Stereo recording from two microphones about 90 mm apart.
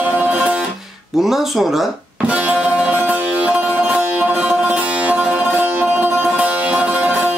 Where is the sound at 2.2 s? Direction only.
15° right (ahead or behind).